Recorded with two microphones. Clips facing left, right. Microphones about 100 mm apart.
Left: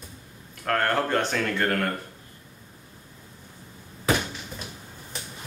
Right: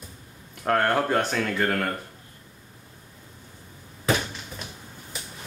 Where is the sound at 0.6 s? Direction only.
15° right (ahead or behind).